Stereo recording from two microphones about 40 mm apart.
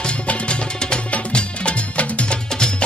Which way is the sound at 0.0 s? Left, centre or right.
Left.